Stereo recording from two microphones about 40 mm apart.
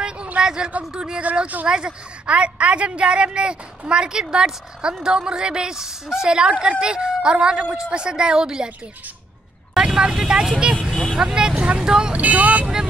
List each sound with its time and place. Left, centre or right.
0.4 s a woman's voice: centre
9.8 s speech: centre
10.8 s speech: centre
11.2 s a woman's voice: centre
12.2 s speech: right